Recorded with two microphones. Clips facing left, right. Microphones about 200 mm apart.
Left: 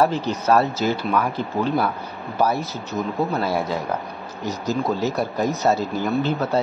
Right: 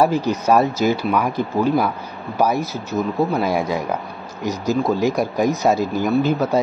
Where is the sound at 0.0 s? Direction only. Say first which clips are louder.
Right 3 dB; 15° right (ahead or behind).